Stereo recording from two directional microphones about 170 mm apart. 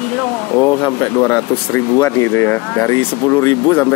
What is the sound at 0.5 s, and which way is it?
Speech, 20° left (ahead or behind).